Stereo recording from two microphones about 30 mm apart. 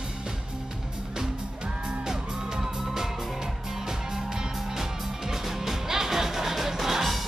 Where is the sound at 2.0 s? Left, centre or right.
Centre.